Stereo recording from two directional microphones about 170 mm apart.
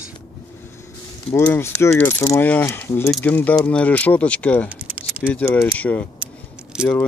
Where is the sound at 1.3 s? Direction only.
10° left (ahead or behind).